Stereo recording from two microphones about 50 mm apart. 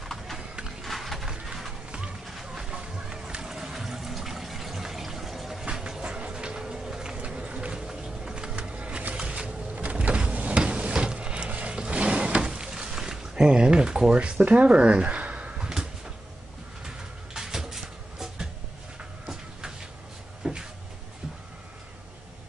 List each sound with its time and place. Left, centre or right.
0.0 s clip-clop: centre
0.8 s a sound: centre
7.2 s run: right
7.8 s a sound: centre
14.1 s speech: right
16.8 s cupboard open or close: centre
20.4 s cupboard open or close: centre